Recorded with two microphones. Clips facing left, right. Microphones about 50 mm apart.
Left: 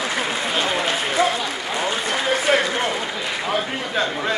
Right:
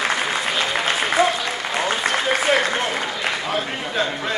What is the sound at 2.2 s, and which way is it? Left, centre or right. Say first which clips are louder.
Applause: left 1 dB; centre.